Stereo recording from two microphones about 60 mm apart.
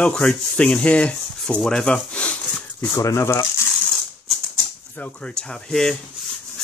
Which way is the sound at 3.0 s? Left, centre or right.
Left.